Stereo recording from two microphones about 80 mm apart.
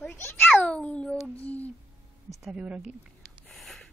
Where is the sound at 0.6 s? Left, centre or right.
Centre.